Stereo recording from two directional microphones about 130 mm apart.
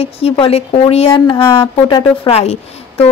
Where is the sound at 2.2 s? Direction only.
50° left (ahead or behind).